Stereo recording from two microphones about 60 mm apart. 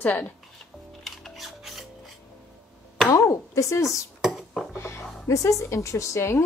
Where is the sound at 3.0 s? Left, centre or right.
Left.